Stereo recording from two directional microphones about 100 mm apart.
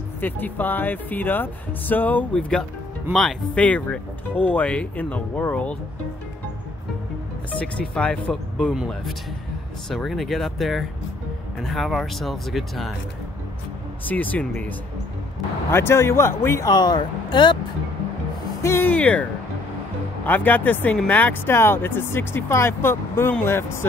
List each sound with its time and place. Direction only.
0.2 s speech: 20° left (ahead or behind)
3.1 s speech: centre (ahead or behind)
3.5 s speech: 15° left (ahead or behind)
7.5 s speech: 10° left (ahead or behind)
14.0 s speech: 15° left (ahead or behind)
15.7 s speech: 25° left (ahead or behind)
16.6 s speech: 45° left (ahead or behind)
18.6 s speech: 25° left (ahead or behind)
20.2 s speech: 20° left (ahead or behind)